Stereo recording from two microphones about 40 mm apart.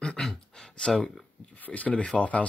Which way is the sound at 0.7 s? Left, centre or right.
Left.